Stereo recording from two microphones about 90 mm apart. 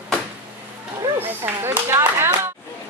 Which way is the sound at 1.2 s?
25° right (ahead or behind).